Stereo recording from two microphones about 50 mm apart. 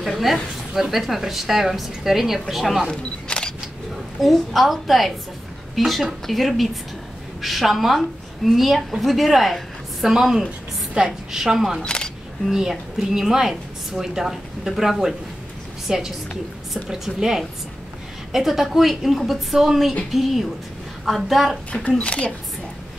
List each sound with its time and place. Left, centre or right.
0.0 s a woman's voice: centre
2.9 s single-lens reflex camera: centre
4.2 s a woman's voice: centre
11.8 s single-lens reflex camera: centre
12.4 s a woman's voice: centre
21.8 s speech: left